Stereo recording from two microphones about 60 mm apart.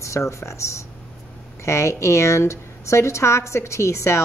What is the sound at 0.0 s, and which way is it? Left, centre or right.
Speech, left.